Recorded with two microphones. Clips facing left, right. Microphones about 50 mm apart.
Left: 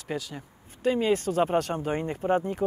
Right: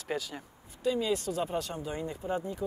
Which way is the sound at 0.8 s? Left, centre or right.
Left.